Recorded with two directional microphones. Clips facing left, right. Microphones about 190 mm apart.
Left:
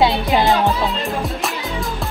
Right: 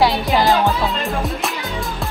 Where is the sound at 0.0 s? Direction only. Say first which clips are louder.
Even; 20° left (ahead or behind).